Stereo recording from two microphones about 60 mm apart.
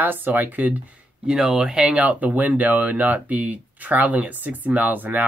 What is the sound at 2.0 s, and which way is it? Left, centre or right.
Speech, right.